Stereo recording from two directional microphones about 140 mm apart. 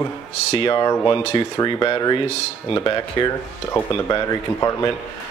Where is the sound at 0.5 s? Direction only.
40° left (ahead or behind).